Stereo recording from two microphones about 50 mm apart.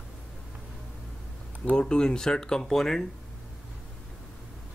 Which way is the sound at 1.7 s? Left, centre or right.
Centre.